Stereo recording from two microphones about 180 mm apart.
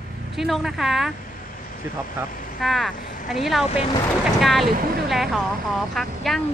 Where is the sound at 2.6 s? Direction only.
Centre (ahead or behind).